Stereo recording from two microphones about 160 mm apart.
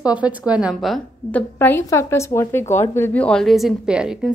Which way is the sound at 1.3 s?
10° left (ahead or behind).